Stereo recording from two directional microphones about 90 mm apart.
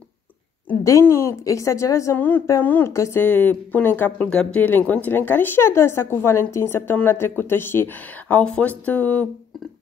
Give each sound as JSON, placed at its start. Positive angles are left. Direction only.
{"t": 0.8, "sound": "a woman's voice", "side_deg": 35}
{"t": 2.1, "sound": "speech", "side_deg": 20}
{"t": 2.9, "sound": "a woman's voice", "side_deg": 35}
{"t": 3.2, "sound": "speech", "side_deg": 20}
{"t": 4.3, "sound": "speech", "side_deg": 10}
{"t": 4.6, "sound": "speech", "side_deg": 20}